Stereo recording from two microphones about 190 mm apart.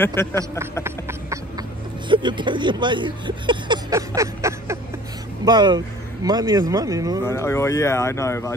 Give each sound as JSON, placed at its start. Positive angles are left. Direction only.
{"t": 0.0, "sound": "speech", "side_deg": 10}
{"t": 0.8, "sound": "a sound", "side_deg": -15}
{"t": 5.4, "sound": "speech", "side_deg": -20}
{"t": 7.2, "sound": "speech", "side_deg": 15}